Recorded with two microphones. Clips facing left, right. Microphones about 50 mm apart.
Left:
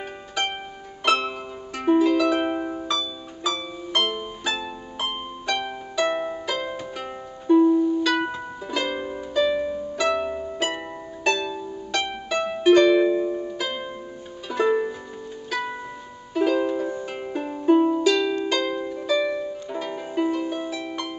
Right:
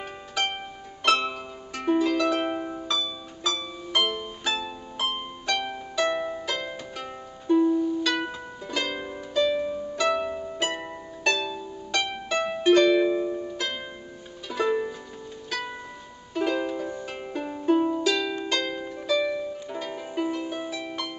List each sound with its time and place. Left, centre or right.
0.4 s music: centre
16.3 s music: centre
18.4 s harp: centre